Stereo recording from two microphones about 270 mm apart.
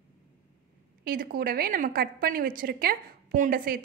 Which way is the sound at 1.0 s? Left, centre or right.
Right.